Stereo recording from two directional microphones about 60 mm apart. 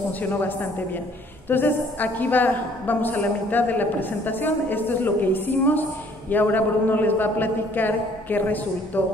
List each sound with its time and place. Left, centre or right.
0.2 s a woman's voice: left